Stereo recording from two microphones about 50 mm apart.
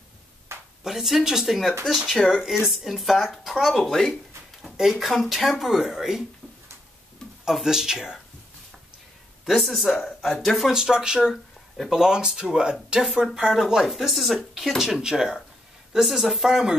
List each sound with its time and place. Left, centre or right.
0.5 s a sound: right
0.8 s speech: centre
4.1 s speech: centre
7.5 s speech: centre
9.5 s speech: centre
10.7 s speech: centre